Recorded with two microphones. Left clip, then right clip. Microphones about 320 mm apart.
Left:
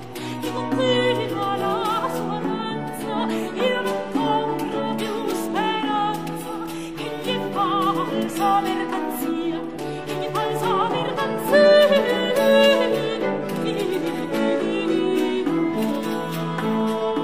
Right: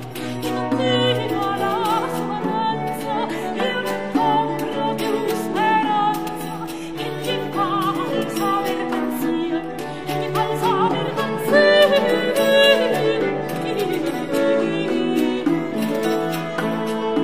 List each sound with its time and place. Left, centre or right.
0.7 s music: left
5.6 s music: left
11.5 s music: left